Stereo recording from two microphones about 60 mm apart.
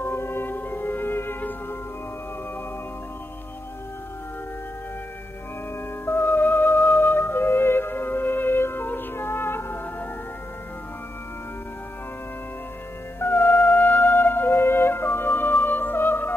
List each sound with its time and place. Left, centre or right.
0.0 s music: left
6.0 s music: left
13.2 s music: left